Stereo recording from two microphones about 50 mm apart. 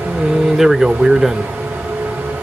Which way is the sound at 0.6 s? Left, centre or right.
Centre.